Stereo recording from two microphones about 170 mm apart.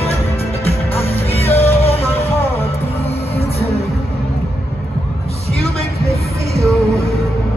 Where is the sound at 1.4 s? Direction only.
35° left (ahead or behind).